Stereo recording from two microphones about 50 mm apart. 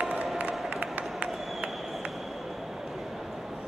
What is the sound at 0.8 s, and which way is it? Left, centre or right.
Run, right.